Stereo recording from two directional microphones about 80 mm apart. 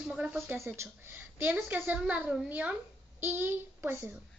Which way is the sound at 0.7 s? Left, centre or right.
Right.